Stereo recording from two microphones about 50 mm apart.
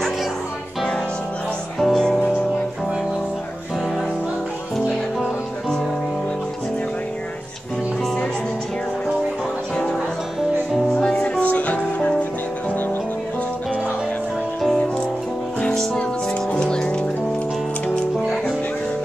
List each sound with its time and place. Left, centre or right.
1.8 s music: centre
11.1 s music: left
15.7 s music: centre
18.2 s music: centre